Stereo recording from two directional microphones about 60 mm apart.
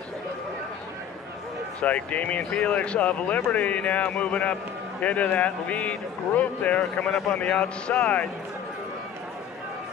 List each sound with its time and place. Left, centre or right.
1.8 s speech: left